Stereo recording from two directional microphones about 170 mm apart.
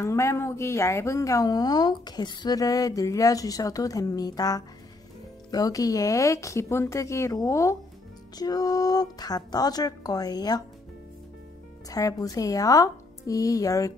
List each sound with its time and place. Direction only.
0.0 s speech: 15° left (ahead or behind)
11.9 s speech: 20° left (ahead or behind)